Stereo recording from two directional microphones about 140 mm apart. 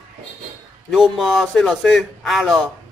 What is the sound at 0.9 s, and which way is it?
A man's voice, centre (ahead or behind).